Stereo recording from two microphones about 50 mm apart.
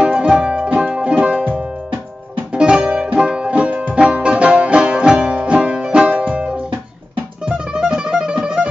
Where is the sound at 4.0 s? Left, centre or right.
Right.